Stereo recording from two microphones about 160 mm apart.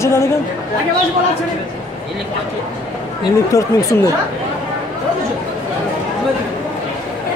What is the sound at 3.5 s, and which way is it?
Speech, 20° left (ahead or behind).